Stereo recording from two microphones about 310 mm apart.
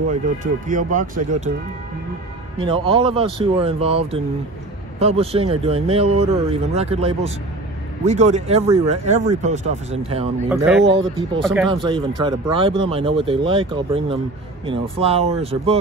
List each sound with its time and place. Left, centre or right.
0.1 s speech: right
2.6 s speech: centre
10.5 s speech: centre
10.9 s speech: centre
11.4 s speech: centre
11.7 s speech: centre